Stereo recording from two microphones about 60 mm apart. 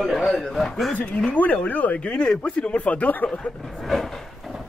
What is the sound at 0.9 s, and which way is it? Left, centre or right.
Speech, centre.